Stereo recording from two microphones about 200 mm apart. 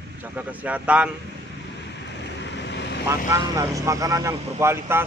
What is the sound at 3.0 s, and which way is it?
Speech, 15° right (ahead or behind).